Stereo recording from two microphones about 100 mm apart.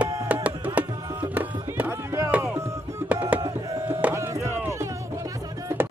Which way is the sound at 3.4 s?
35° right (ahead or behind).